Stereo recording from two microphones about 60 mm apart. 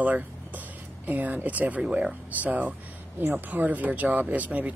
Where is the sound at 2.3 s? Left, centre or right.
Right.